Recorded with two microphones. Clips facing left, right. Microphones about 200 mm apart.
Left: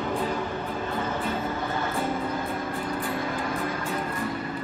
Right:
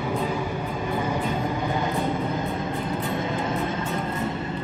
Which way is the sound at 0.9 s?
10° right (ahead or behind).